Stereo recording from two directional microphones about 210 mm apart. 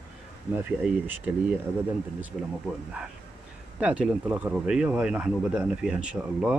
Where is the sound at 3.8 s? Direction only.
5° right (ahead or behind).